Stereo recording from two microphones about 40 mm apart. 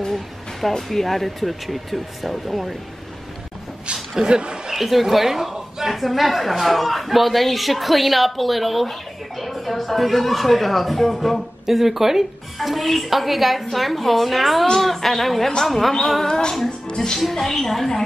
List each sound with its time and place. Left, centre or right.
0.0 s a woman's voice: centre
4.2 s speech: right
4.7 s a woman's voice: centre
16.8 s music: centre
17.3 s a woman's voice: centre